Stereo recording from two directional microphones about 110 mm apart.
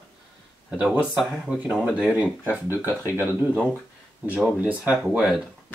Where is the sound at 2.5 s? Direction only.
20° right (ahead or behind).